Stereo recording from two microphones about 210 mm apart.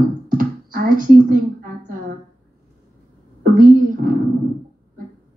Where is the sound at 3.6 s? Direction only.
40° right (ahead or behind).